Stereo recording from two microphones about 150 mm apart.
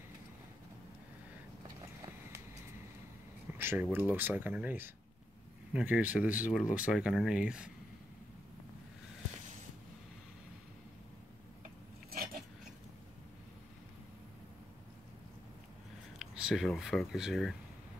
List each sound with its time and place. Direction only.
3.5 s speech: 15° right (ahead or behind)
12.1 s a sound: 85° right
16.2 s speech: 5° right (ahead or behind)